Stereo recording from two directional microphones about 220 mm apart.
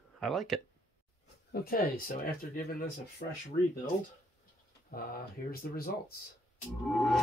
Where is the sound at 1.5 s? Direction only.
45° left (ahead or behind).